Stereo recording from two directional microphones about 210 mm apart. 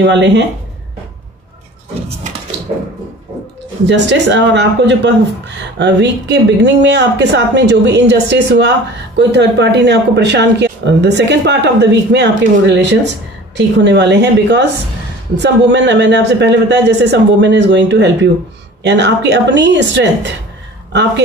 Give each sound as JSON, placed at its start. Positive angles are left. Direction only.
{"t": 0.0, "sound": "speech", "side_deg": -55}
{"t": 3.8, "sound": "speech", "side_deg": -55}